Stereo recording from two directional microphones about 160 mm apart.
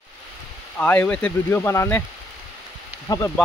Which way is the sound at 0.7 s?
10° left (ahead or behind).